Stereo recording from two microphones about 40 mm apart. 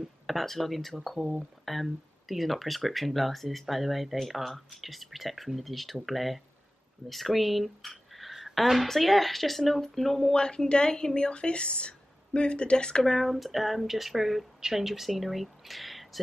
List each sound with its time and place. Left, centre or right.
0.3 s speech: centre
10.3 s a woman's voice: centre
13.0 s speech: centre